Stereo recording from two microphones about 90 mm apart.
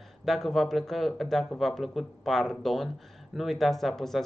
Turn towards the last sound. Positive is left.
turn(degrees=5)  # may be behind; listen again after turning